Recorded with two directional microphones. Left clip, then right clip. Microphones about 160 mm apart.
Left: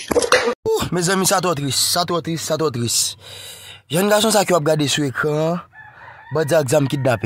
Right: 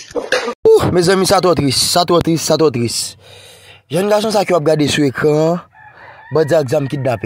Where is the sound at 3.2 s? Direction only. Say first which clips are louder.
Left 3 dB; 10° left (ahead or behind); by 5.4 s 20° right (ahead or behind).